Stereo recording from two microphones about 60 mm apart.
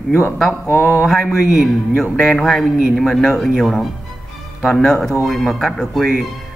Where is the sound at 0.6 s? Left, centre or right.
Left.